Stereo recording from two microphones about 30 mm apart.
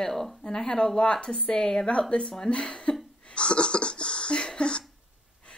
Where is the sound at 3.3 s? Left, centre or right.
Left.